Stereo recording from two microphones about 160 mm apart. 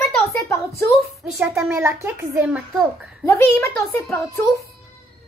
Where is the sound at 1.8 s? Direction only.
15° right (ahead or behind).